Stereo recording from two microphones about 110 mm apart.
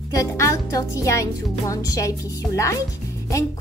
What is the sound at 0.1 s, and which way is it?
A woman's voice, 30° left (ahead or behind).